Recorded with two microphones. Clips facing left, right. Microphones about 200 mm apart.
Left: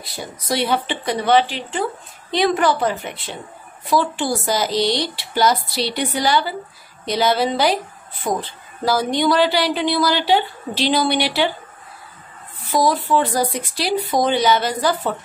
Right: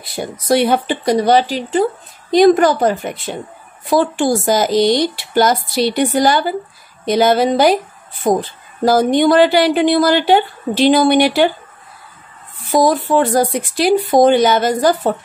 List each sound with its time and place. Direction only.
0.1 s a woman's voice: 50° right (ahead or behind)
12.7 s a woman's voice: 45° right (ahead or behind)